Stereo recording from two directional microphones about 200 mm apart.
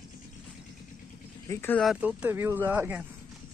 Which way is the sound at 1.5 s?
10° left (ahead or behind).